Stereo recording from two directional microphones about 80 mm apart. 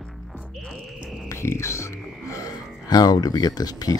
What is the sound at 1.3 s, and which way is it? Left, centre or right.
Music, left.